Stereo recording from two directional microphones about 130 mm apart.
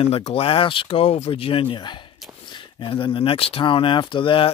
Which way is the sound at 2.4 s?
40° left (ahead or behind).